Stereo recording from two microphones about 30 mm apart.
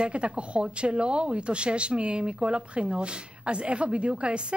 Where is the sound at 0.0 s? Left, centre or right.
Right.